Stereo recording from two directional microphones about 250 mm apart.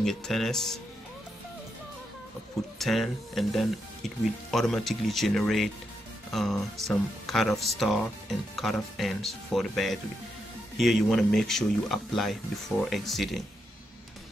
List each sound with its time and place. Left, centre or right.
0.0 s speech: centre
2.8 s speech: centre